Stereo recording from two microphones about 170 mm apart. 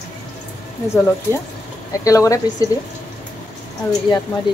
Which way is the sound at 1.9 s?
20° left (ahead or behind).